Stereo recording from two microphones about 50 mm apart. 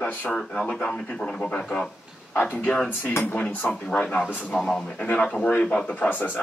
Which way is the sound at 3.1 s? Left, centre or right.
Left.